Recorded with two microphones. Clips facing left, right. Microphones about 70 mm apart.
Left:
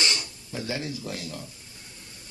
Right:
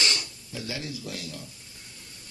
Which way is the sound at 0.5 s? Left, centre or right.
Left.